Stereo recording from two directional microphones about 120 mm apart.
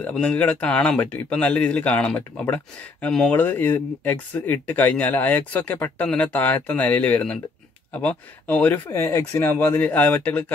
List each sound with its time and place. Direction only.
0.0 s speech: 10° left (ahead or behind)
3.1 s speech: 5° left (ahead or behind)
3.3 s speech: 15° left (ahead or behind)